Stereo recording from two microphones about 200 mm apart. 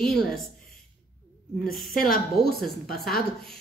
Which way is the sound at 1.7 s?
Centre (ahead or behind).